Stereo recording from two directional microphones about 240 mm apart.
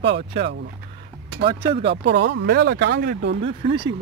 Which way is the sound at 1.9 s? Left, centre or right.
Right.